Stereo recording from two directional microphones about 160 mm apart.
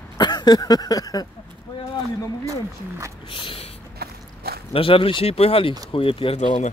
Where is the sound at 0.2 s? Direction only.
25° left (ahead or behind).